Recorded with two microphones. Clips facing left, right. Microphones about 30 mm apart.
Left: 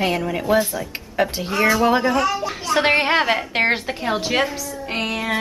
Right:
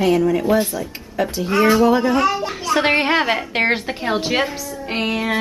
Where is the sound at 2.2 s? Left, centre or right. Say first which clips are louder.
Right 2 dB; centre.